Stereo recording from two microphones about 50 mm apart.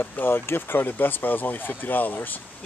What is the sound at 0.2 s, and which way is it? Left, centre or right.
Speech, left.